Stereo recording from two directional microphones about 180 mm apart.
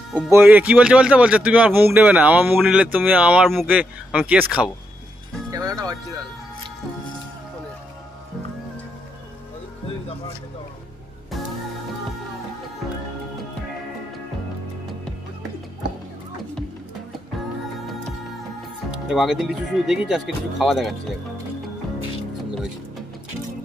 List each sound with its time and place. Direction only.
0.3 s speech: 10° right (ahead or behind)
5.5 s speech: 20° right (ahead or behind)
19.0 s speech: 5° right (ahead or behind)